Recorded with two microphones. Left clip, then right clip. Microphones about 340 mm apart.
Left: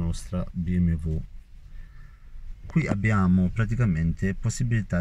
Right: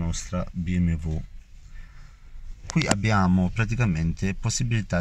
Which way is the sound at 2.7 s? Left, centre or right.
Right.